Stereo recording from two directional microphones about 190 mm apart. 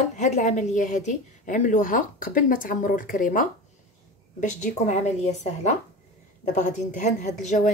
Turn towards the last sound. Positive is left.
turn(degrees=40)  # may be behind; listen again after turning